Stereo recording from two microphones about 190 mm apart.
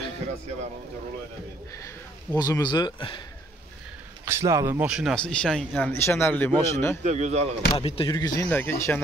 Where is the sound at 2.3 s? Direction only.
20° left (ahead or behind).